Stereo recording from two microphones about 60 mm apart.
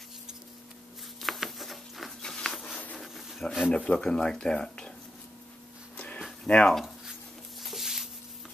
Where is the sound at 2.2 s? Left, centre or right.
Centre.